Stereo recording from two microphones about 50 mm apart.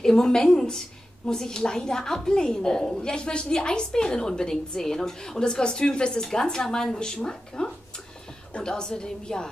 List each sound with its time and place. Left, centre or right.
0.0 s a woman's voice: centre